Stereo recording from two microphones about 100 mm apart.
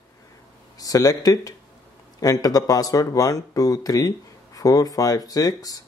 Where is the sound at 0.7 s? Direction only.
35° left (ahead or behind).